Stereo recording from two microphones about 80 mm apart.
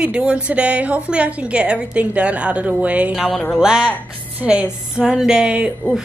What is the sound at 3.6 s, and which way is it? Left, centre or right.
Speech, centre.